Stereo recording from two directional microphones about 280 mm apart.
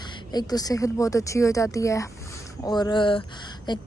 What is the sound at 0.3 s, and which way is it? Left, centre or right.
A woman's voice, centre.